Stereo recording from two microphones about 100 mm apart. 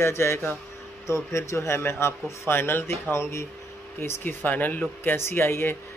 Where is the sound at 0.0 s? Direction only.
25° left (ahead or behind).